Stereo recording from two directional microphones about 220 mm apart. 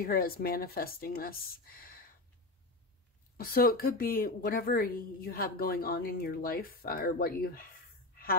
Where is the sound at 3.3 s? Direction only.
45° left (ahead or behind).